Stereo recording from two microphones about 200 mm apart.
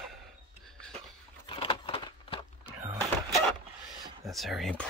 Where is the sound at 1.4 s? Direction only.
25° left (ahead or behind).